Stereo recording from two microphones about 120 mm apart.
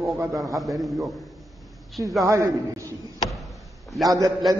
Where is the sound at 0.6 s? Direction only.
Centre (ahead or behind).